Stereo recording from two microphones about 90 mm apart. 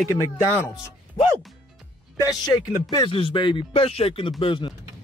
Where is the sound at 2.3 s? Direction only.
45° left (ahead or behind).